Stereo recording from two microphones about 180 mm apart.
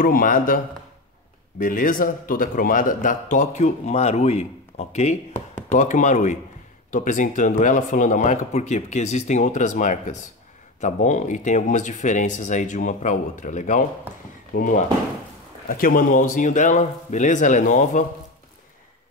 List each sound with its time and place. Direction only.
0.0 s speech: 50° left (ahead or behind)
1.6 s speech: 50° left (ahead or behind)
14.1 s speech: 10° right (ahead or behind)
14.5 s speech: 50° left (ahead or behind)